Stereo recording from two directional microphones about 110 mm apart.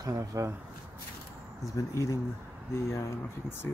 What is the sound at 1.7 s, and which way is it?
Speech, 30° left (ahead or behind).